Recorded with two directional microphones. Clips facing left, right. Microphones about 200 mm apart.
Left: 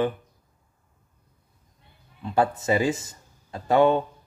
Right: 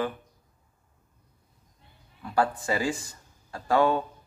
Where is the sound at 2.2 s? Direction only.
20° left (ahead or behind).